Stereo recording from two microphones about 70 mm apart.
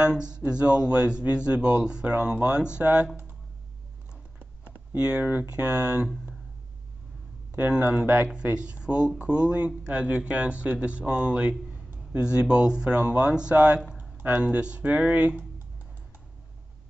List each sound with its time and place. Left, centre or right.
0.0 s speech: centre
4.9 s speech: centre
7.5 s speech: right